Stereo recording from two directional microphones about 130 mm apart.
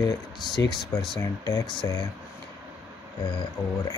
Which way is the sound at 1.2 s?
25° left (ahead or behind).